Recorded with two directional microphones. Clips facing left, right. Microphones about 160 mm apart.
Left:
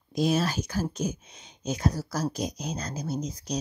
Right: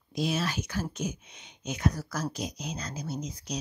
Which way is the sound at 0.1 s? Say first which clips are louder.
Left 5 dB; 40° left (ahead or behind).